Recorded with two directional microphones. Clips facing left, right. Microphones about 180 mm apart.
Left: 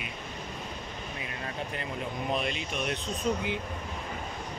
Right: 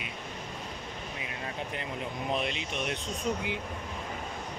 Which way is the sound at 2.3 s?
20° right (ahead or behind).